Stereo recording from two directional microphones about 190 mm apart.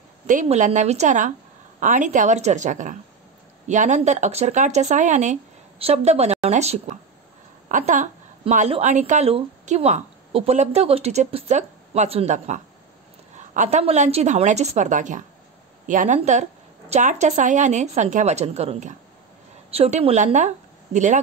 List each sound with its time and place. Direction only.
0.3 s a woman's voice: 40° right (ahead or behind)